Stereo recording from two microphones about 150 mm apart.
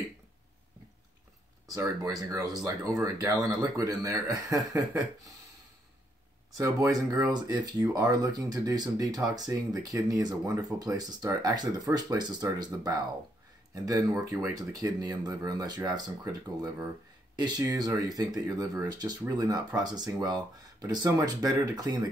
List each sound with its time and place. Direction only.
1.7 s speech: 25° right (ahead or behind)
6.6 s speech: 25° right (ahead or behind)